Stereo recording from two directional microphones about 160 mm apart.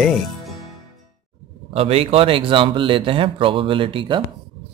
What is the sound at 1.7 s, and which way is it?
Speech, 40° right (ahead or behind).